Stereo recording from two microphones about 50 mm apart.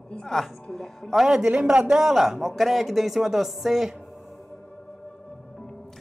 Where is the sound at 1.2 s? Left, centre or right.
Centre.